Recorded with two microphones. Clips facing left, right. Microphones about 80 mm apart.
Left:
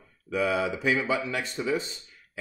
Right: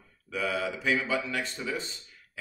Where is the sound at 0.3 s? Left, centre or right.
Centre.